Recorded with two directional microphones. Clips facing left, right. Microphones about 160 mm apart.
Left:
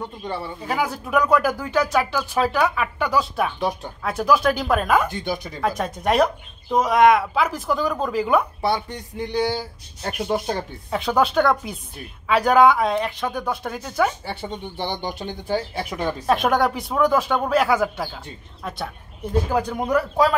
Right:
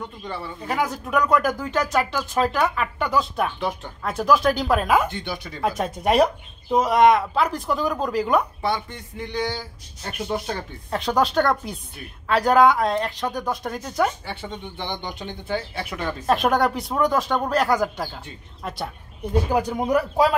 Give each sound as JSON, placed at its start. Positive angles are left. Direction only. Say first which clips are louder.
{"t": 0.0, "sound": "speech", "louder": "left 3 dB", "side_deg": 25}
{"t": 0.6, "sound": "speech", "louder": "right 1 dB", "side_deg": 5}
{"t": 5.2, "sound": "speech", "louder": "left 4 dB", "side_deg": 45}
{"t": 5.6, "sound": "speech", "louder": "right 3 dB", "side_deg": -5}
{"t": 8.7, "sound": "speech", "louder": "left 3 dB", "side_deg": 35}
{"t": 10.9, "sound": "speech", "louder": "left 1 dB", "side_deg": 5}
{"t": 14.2, "sound": "speech", "louder": "left 3 dB", "side_deg": 35}
{"t": 15.7, "sound": "speech", "louder": "left 3 dB", "side_deg": 15}
{"t": 16.3, "sound": "speech", "louder": "even", "side_deg": 0}
{"t": 19.5, "sound": "speech", "louder": "right 1 dB", "side_deg": -20}